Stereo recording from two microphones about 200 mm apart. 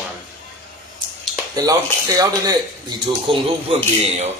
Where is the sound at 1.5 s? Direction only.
15° right (ahead or behind).